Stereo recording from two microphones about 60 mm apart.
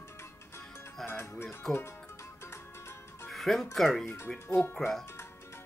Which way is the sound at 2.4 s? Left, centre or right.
Left.